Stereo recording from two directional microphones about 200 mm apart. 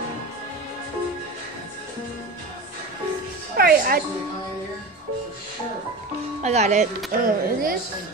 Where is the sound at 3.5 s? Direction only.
50° right (ahead or behind).